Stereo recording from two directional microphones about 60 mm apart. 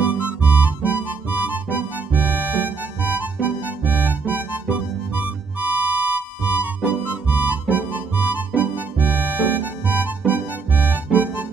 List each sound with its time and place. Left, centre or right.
0.4 s music: right